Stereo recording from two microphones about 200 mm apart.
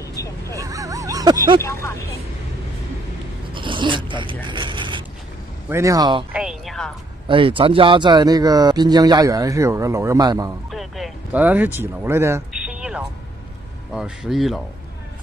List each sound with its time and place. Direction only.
0.6 s a sound: 15° right (ahead or behind)
1.6 s vehicle: 15° left (ahead or behind)
3.5 s zipper: 25° right (ahead or behind)
4.5 s creak: 25° right (ahead or behind)
5.7 s speech: 15° right (ahead or behind)
6.3 s a sound: centre (ahead or behind)
7.2 s speech: 25° right (ahead or behind)
10.7 s a sound: centre (ahead or behind)
13.9 s speech: centre (ahead or behind)